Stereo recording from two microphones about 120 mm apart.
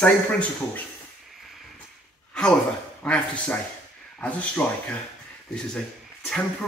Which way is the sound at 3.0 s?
10° left (ahead or behind).